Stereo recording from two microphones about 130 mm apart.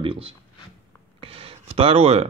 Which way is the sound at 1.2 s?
45° right (ahead or behind).